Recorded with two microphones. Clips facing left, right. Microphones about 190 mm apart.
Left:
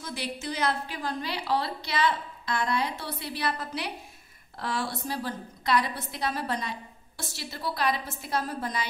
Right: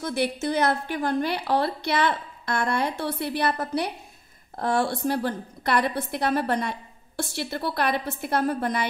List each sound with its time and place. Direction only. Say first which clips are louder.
0.0 s a woman's voice: right 9 dB; 60° right (ahead or behind)